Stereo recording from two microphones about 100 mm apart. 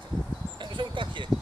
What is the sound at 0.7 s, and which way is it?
Speech, 55° right (ahead or behind).